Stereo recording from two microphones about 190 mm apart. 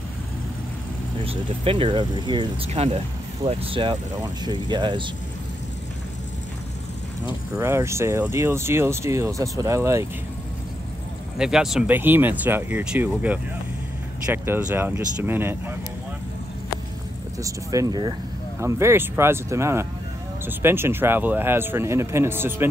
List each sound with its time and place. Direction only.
1.2 s speech: 30° right (ahead or behind)
7.5 s speech: 15° right (ahead or behind)
11.3 s speech: 5° right (ahead or behind)
17.4 s speech: 15° right (ahead or behind)